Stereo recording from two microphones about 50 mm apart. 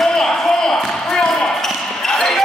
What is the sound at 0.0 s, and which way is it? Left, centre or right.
Basketball bounce, centre.